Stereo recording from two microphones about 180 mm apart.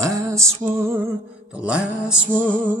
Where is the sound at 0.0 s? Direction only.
15° right (ahead or behind).